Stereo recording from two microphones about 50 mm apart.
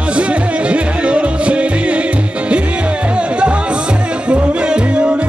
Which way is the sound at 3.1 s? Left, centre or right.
Right.